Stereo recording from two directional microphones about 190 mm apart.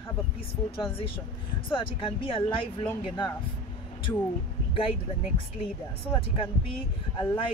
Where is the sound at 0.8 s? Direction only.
30° left (ahead or behind).